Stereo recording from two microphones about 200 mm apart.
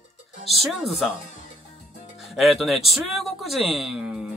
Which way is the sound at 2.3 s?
Centre (ahead or behind).